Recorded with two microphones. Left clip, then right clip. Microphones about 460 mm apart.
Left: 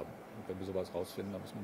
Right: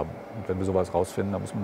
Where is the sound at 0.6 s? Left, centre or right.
Right.